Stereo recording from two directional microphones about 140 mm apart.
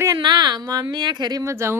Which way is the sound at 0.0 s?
30° right (ahead or behind).